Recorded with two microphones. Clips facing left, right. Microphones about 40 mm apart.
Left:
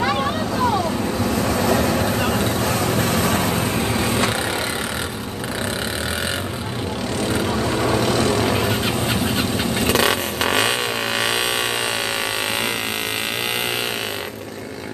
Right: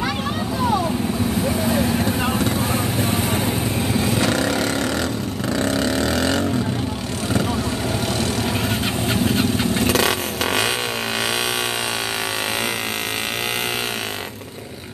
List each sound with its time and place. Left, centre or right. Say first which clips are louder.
0.0 s vehicle: left 3 dB; centre
1.5 s vehicle: left 3 dB; left
3.0 s vehicle: left 2 dB; left
3.9 s vehicle: right 3 dB; left
8.2 s vehicle: left 4 dB; centre